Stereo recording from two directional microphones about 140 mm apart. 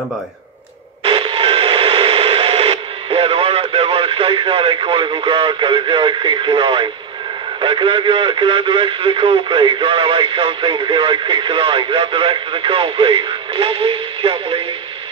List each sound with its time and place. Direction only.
1.0 s radio: 40° right (ahead or behind)
7.6 s speech: 35° right (ahead or behind)